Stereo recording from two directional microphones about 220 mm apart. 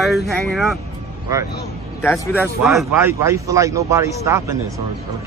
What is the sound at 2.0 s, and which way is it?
Speech, 10° left (ahead or behind).